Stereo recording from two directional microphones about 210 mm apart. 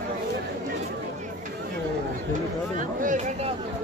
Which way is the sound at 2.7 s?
35° right (ahead or behind).